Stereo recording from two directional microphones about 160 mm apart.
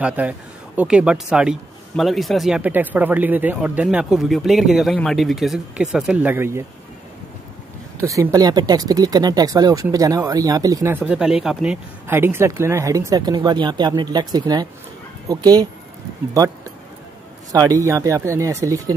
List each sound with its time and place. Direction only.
0.0 s speech: 10° right (ahead or behind)
8.0 s speech: 20° right (ahead or behind)
17.5 s speech: 20° right (ahead or behind)